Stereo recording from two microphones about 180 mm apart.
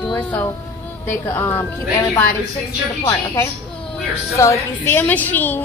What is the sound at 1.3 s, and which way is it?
Speech, 10° left (ahead or behind).